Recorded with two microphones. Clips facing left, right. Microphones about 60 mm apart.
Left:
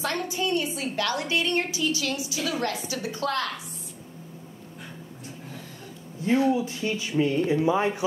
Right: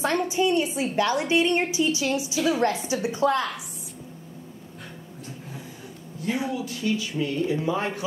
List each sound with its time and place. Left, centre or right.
0.0 s a woman's voice: right
6.5 s speech: left